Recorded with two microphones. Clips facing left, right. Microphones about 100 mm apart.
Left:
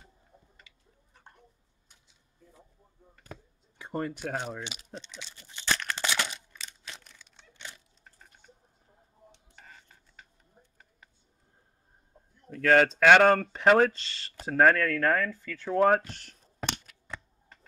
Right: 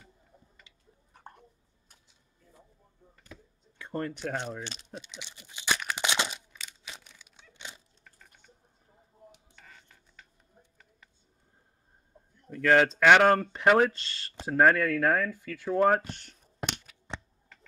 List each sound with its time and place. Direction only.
3.7 s speech: 15° left (ahead or behind)
5.1 s tearing: 15° right (ahead or behind)
6.5 s a sound: 5° right (ahead or behind)
9.6 s cutlery: 40° left (ahead or behind)
12.4 s a sound: centre (ahead or behind)
12.8 s speech: centre (ahead or behind)
17.1 s computer keyboard: 25° right (ahead or behind)